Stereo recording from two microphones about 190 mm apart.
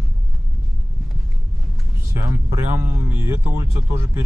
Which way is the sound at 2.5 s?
15° right (ahead or behind).